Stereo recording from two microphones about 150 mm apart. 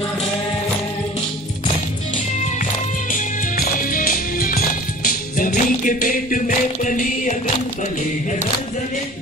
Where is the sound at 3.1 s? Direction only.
65° left (ahead or behind).